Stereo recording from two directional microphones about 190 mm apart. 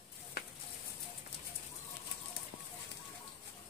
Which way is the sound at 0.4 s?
55° left (ahead or behind).